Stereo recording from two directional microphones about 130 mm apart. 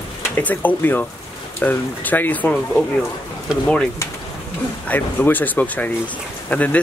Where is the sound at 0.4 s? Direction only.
15° left (ahead or behind).